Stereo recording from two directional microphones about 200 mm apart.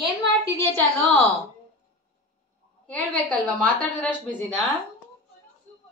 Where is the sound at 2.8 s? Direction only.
5° left (ahead or behind).